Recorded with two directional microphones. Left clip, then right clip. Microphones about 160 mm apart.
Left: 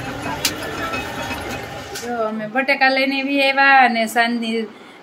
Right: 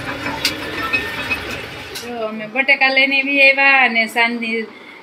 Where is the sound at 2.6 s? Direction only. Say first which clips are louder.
Right 3 dB; 15° left (ahead or behind).